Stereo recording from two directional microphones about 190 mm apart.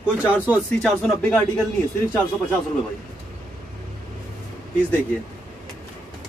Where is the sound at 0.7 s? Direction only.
5° left (ahead or behind).